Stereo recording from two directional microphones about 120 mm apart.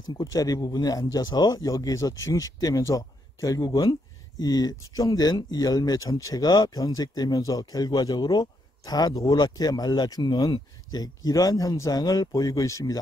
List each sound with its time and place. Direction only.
0.1 s speech: 30° left (ahead or behind)